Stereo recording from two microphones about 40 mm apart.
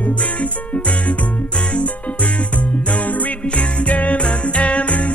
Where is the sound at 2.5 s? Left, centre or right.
Left.